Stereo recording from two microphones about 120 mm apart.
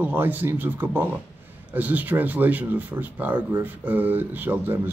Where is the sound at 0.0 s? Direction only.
15° right (ahead or behind).